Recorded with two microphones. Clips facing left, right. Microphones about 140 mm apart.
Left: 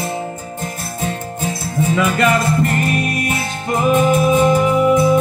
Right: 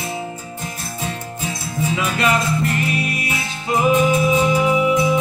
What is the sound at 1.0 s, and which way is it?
Music, 50° left (ahead or behind).